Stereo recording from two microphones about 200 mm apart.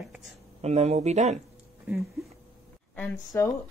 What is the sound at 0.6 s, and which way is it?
Speech, 35° right (ahead or behind).